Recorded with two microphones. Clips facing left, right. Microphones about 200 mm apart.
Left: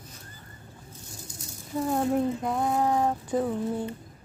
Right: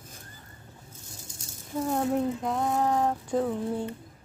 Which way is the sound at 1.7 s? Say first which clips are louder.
Left 1 dB; centre (ahead or behind).